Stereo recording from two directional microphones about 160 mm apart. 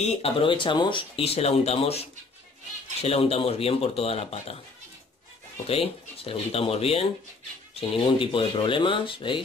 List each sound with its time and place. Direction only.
0.0 s speech: 35° left (ahead or behind)
5.7 s speech: 35° left (ahead or behind)